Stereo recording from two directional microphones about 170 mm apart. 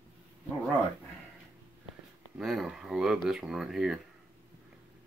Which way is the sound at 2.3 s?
Centre (ahead or behind).